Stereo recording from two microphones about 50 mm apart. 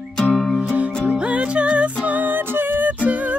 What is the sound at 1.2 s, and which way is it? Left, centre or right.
Music, right.